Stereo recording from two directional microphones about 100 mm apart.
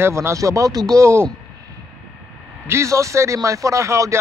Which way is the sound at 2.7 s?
30° right (ahead or behind).